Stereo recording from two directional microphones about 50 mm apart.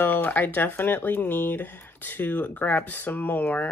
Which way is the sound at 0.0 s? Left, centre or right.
Left.